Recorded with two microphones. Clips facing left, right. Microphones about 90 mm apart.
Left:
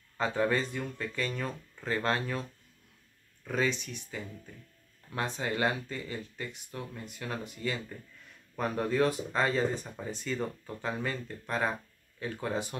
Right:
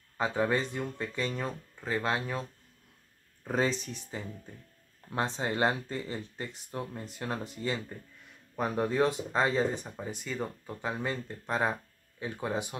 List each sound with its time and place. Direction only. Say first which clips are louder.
0.2 s speech: even; 15° right (ahead or behind)
3.4 s speech: right 1 dB; 35° right (ahead or behind)
8.5 s speech: right 1 dB; 15° right (ahead or behind)